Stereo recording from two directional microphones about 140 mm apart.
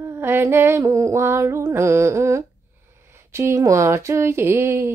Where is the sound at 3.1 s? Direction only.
20° right (ahead or behind).